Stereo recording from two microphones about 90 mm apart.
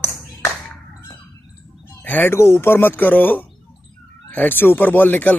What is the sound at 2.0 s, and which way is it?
Speech, 20° left (ahead or behind).